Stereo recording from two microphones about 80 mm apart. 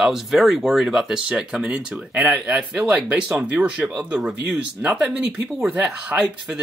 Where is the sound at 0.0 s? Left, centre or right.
Centre.